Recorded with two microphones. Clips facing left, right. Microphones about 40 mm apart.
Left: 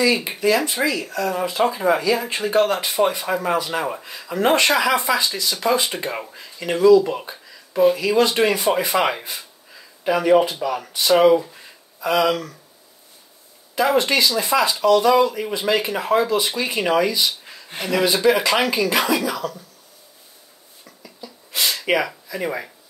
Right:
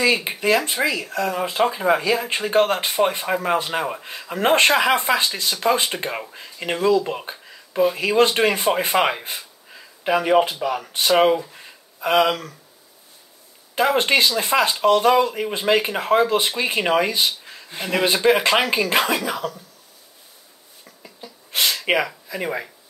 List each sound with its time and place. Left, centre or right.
0.0 s speech: right
0.8 s speech: centre
1.1 s speech: centre
1.6 s speech: centre
1.9 s speech: right
3.5 s speech: right
5.5 s speech: right
7.0 s speech: centre
10.1 s speech: right
10.9 s speech: right
13.7 s speech: right
21.0 s a sound: right
21.9 s speech: right
22.3 s speech: centre